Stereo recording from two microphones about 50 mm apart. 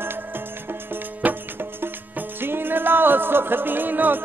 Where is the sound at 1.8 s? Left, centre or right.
Right.